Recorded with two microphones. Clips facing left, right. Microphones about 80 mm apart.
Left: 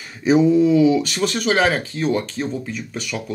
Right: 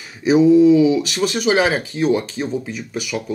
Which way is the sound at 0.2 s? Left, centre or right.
Centre.